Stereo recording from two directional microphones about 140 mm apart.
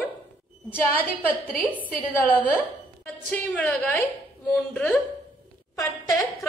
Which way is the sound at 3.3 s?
10° left (ahead or behind).